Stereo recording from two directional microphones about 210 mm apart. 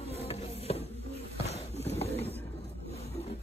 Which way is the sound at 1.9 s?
30° left (ahead or behind).